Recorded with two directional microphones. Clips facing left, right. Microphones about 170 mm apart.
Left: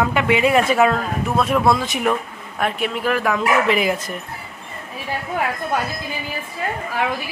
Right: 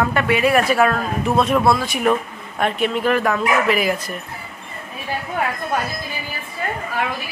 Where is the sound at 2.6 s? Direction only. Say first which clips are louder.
Right 2 dB; 5° left (ahead or behind).